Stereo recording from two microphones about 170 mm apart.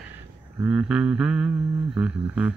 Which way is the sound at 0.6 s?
5° right (ahead or behind).